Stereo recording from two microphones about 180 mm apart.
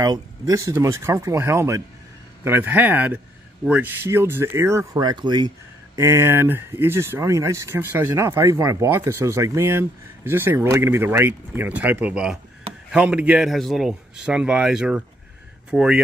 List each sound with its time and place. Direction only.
0.0 s a man's voice: 20° right (ahead or behind); by 16.0 s 5° right (ahead or behind)